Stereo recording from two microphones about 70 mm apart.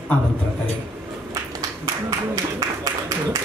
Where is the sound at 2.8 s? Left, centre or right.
Right.